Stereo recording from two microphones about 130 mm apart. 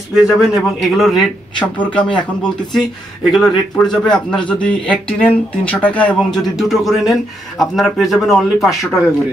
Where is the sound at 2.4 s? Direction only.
5° left (ahead or behind).